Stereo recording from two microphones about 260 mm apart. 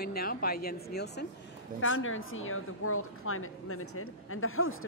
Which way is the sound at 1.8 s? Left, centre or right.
Left.